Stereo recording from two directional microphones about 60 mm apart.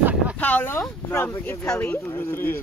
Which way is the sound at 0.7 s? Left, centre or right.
Left.